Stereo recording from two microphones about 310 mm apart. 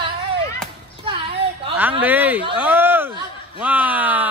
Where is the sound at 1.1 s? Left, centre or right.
Centre.